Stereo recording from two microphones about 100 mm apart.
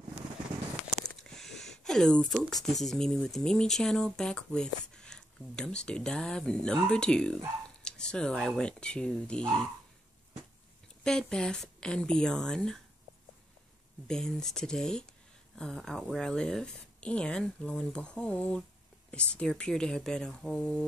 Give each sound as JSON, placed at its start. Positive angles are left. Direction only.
{"t": 1.3, "sound": "a sound", "side_deg": 5}
{"t": 2.6, "sound": "speech", "side_deg": 5}
{"t": 11.1, "sound": "speech", "side_deg": 5}
{"t": 14.0, "sound": "speech", "side_deg": 5}